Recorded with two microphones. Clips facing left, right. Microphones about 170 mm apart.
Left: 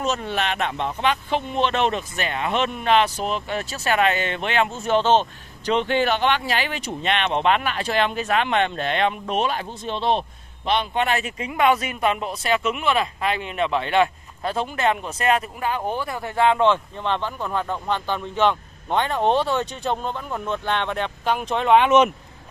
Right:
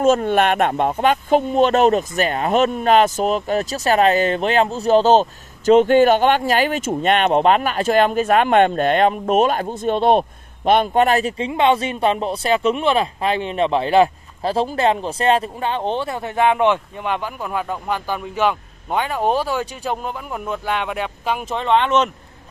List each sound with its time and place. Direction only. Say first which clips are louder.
0.0 s speech: right 9 dB; 50° right (ahead or behind); by 22.1 s 10° left (ahead or behind)